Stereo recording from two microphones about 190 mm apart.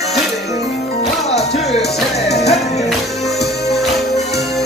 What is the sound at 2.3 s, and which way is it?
Music, 35° left (ahead or behind).